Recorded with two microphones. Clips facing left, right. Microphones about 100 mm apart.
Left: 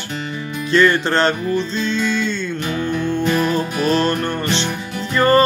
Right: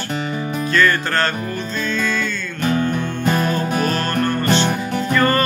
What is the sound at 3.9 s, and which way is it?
Music, 25° left (ahead or behind).